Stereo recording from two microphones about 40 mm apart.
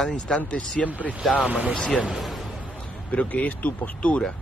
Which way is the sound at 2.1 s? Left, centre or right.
Centre.